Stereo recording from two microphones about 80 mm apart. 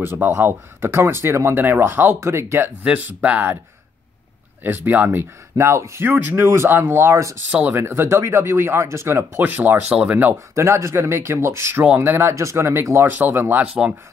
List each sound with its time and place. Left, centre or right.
0.0 s speech: right
2.8 s speech: right
4.6 s speech: right
5.6 s speech: right; by 10.3 s centre
10.5 s speech: right